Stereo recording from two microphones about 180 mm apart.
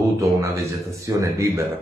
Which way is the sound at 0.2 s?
15° right (ahead or behind).